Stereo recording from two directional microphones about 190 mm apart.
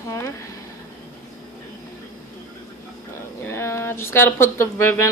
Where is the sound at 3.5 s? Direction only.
15° left (ahead or behind).